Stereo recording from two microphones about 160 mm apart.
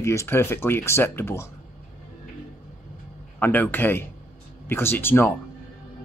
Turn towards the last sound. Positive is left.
turn(degrees=15)  # may be behind; listen again after turning